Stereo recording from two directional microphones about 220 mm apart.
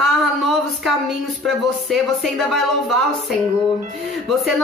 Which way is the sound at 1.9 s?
Centre (ahead or behind).